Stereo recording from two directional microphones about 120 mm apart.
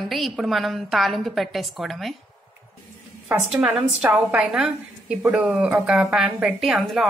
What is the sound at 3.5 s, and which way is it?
A woman's voice, 15° right (ahead or behind).